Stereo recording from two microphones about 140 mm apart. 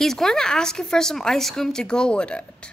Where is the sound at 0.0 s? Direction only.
5° left (ahead or behind).